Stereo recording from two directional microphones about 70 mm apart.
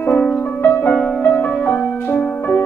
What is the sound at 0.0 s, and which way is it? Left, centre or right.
Music, left.